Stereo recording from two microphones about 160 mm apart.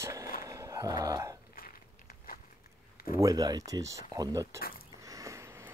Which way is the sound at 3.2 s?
20° right (ahead or behind).